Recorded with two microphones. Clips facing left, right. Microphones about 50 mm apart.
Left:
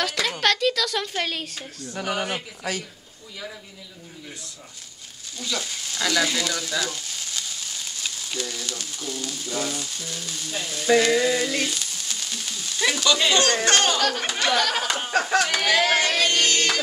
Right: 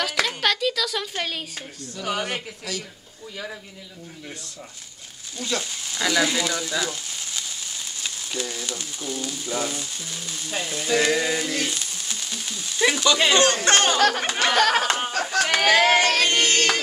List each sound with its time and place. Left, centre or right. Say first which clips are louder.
0.0 s speech: even; centre
5.4 s speech: right 2 dB; centre
11.0 s a sound: right 1 dB; centre
11.6 s frying: even; centre
13.7 s speech: right 2 dB; right
14.5 s speech: right 4 dB; right
15.1 s speech: left 7 dB; centre
15.4 s music: right 3 dB; right